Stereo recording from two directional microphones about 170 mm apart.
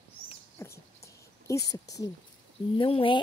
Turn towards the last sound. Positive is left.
turn(degrees=30)  # may be behind; listen again after turning